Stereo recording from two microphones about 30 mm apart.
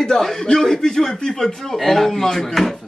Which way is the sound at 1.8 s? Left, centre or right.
Centre.